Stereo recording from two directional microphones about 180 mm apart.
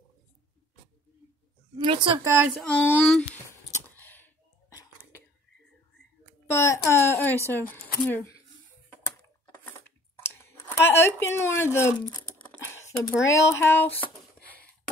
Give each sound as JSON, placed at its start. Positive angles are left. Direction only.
{"t": 1.8, "sound": "speech", "side_deg": -25}
{"t": 2.2, "sound": "speech", "side_deg": -15}
{"t": 2.6, "sound": "speech", "side_deg": 10}
{"t": 3.9, "sound": "a sound", "side_deg": 10}
{"t": 6.5, "sound": "speech", "side_deg": 15}
{"t": 9.7, "sound": "chewing", "side_deg": 10}
{"t": 13.2, "sound": "speech", "side_deg": 15}